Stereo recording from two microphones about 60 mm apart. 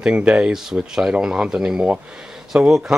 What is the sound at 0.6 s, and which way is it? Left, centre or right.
Speech, centre.